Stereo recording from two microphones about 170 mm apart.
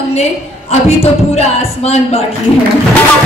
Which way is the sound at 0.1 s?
40° left (ahead or behind).